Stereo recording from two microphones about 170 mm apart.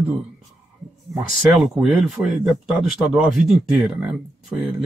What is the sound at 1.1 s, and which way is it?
Speech, centre (ahead or behind).